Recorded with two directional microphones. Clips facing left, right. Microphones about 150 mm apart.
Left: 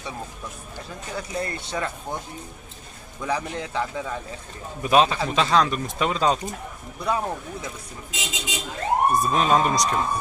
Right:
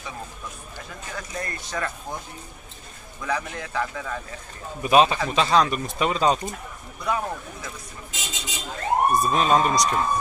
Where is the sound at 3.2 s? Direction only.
25° left (ahead or behind).